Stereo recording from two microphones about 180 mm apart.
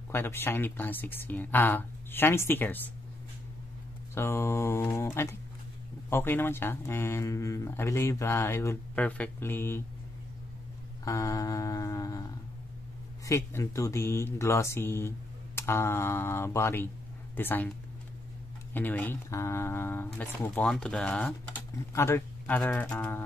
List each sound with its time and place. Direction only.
0.1 s speech: 15° left (ahead or behind)
4.1 s speech: 15° left (ahead or behind)
11.1 s a sound: 20° left (ahead or behind)
13.2 s speech: 15° left (ahead or behind)
18.7 s a man's voice: 10° left (ahead or behind)